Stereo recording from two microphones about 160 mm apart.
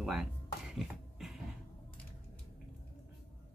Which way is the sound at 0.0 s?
5° right (ahead or behind).